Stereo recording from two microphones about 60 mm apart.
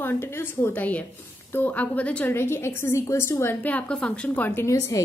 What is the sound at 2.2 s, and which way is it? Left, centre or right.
A woman's voice, left.